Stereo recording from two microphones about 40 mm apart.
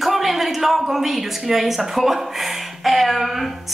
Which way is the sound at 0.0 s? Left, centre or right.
Centre.